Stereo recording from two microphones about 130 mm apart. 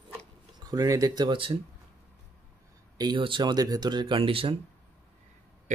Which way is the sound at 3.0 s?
35° right (ahead or behind).